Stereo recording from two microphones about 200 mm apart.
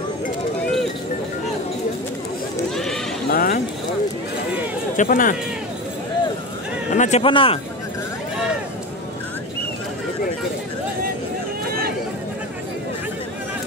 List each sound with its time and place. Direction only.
2.7 s sheep: centre (ahead or behind)
3.3 s a sound: 45° left (ahead or behind)
4.9 s speech: 45° left (ahead or behind)
6.9 s speech: 35° left (ahead or behind)